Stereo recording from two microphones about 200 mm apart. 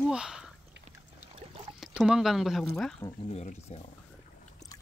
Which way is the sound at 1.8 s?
5° right (ahead or behind).